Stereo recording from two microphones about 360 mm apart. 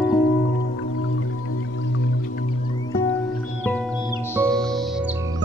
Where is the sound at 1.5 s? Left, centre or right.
Left.